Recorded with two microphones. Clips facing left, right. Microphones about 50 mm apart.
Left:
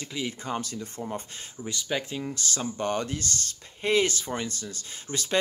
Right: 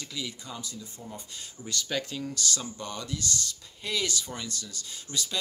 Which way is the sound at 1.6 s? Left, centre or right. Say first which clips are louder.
Left 2 dB; centre.